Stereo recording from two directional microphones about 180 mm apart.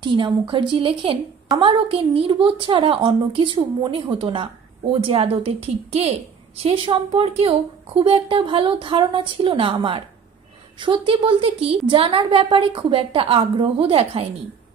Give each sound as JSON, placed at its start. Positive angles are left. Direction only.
{"t": 0.0, "sound": "a woman's voice", "side_deg": -25}